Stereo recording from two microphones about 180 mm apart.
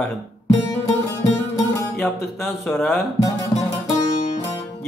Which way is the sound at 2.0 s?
5° left (ahead or behind).